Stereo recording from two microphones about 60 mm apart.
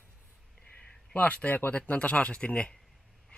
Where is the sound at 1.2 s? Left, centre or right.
Left.